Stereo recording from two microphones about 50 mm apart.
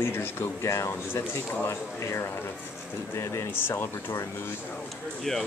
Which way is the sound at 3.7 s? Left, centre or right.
Left.